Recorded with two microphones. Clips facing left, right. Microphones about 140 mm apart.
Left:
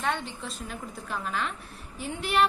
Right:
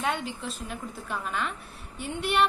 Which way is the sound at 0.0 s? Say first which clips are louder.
Right 1 dB; 5° right (ahead or behind).